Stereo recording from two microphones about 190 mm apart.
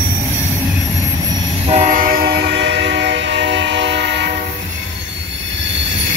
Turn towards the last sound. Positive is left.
turn(degrees=-65)  # may be behind; listen again after turning